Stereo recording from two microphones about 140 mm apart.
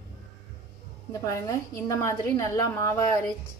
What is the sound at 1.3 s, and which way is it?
A woman's voice, 20° left (ahead or behind).